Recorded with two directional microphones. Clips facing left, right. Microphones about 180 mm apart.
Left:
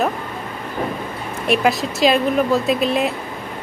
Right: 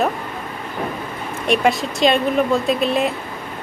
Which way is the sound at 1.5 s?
Centre (ahead or behind).